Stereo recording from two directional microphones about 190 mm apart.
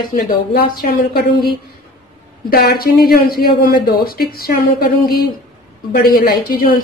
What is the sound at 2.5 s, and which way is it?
Speech, 50° left (ahead or behind).